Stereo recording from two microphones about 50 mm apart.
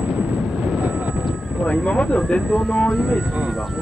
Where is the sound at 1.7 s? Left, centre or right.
Left.